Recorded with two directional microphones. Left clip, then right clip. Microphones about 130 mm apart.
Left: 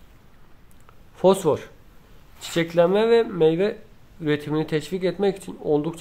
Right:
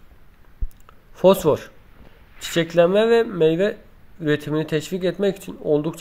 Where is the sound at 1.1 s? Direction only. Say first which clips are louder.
Right 3 dB; 15° right (ahead or behind).